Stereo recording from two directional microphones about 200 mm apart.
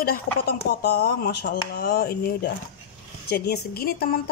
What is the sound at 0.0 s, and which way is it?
A woman's voice, 50° left (ahead or behind).